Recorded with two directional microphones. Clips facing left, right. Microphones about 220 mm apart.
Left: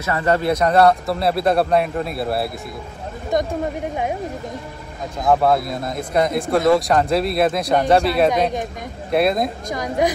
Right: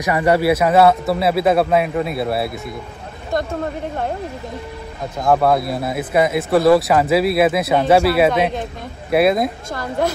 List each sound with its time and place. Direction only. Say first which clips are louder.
0.0 s speech: right 3 dB; 15° right (ahead or behind)
3.3 s a woman's voice: left 1 dB; 20° left (ahead or behind)
5.2 s speech: right 1 dB; centre (ahead or behind)
9.7 s a woman's voice: left 1 dB; 15° left (ahead or behind)